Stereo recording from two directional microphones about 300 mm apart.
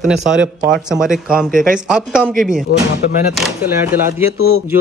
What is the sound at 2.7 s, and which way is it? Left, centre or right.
Speech, left.